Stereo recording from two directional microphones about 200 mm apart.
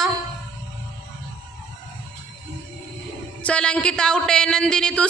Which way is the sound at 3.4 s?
5° left (ahead or behind).